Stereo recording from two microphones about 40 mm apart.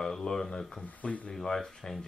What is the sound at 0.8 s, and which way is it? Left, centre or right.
Speech, left.